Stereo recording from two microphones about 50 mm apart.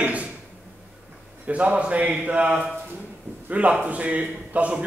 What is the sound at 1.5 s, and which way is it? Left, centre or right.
A man's voice, right.